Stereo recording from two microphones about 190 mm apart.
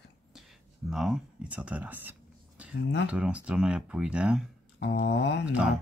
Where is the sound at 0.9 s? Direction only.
Centre (ahead or behind).